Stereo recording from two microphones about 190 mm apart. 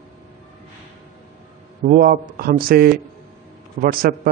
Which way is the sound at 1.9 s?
50° right (ahead or behind).